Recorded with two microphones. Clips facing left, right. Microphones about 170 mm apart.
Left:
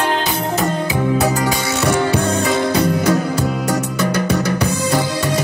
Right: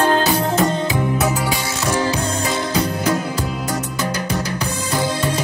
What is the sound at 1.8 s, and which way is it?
Music, 60° left (ahead or behind).